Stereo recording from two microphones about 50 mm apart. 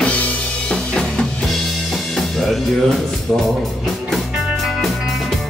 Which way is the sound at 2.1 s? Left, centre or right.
Centre.